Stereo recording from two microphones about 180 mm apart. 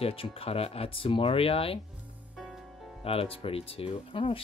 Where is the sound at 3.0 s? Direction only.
30° left (ahead or behind).